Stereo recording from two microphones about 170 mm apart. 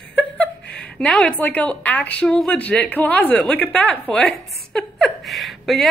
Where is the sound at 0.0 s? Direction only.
5° left (ahead or behind).